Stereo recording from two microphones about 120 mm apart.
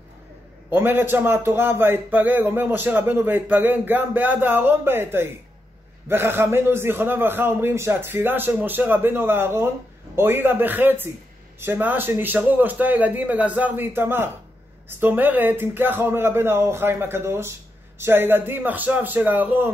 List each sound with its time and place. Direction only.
0.7 s a man's voice: 15° right (ahead or behind)